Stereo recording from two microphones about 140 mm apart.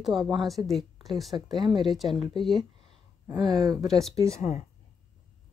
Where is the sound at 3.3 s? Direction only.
25° right (ahead or behind).